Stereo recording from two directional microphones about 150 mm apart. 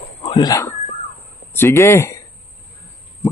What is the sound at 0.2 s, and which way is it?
Speech, 30° left (ahead or behind).